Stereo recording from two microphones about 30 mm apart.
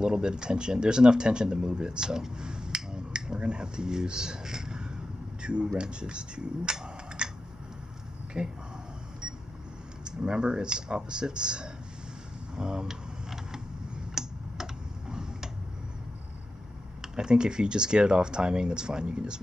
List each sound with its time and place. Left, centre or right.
0.0 s speech: right
8.3 s speech: right
10.0 s speech: right
12.8 s a sound: centre
14.1 s computer keyboard: right
17.0 s speech: right